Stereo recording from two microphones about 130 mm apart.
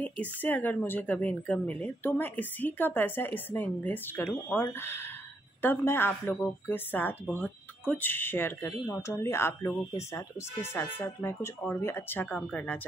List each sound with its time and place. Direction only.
0.0 s a woman's voice: 15° left (ahead or behind)